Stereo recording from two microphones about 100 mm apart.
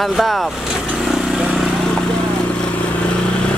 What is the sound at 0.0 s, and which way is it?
Speech, centre (ahead or behind).